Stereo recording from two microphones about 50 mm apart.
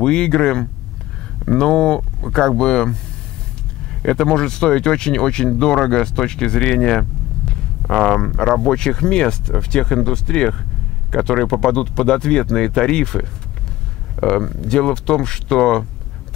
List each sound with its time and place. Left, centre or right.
0.0 s speech: centre
4.0 s speech: centre